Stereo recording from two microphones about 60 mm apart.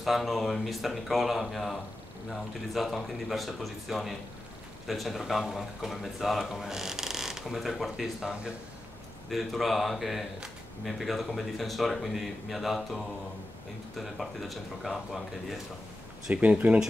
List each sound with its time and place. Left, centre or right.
0.0 s a man's voice: centre
9.3 s speech: centre
16.3 s speech: right